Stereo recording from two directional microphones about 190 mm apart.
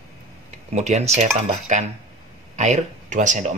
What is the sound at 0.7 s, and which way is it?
Speech, 35° right (ahead or behind).